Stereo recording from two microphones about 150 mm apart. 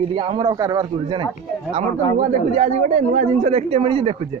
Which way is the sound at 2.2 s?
50° right (ahead or behind).